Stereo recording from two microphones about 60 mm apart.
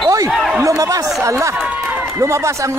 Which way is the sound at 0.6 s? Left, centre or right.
Right.